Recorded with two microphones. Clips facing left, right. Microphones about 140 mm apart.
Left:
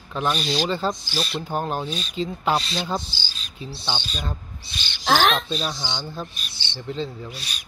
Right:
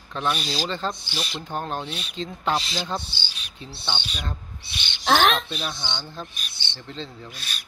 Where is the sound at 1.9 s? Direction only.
65° right (ahead or behind).